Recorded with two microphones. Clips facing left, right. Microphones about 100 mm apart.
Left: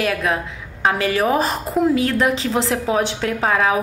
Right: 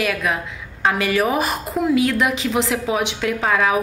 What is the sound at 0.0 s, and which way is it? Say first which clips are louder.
A woman's voice: left 1 dB; 30° left (ahead or behind).